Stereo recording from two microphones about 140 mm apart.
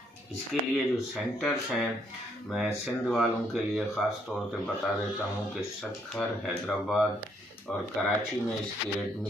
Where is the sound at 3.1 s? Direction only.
Centre (ahead or behind).